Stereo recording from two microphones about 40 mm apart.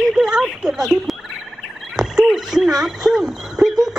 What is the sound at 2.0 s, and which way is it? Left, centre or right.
Speech, centre.